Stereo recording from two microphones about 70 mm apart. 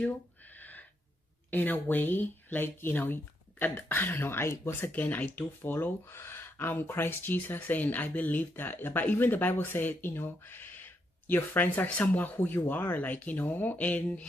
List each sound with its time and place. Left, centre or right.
0.0 s a sound: left
1.5 s speech: left
4.9 s speech: left